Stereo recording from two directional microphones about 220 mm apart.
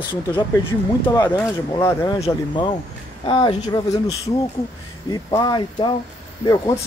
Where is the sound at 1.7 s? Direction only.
15° left (ahead or behind).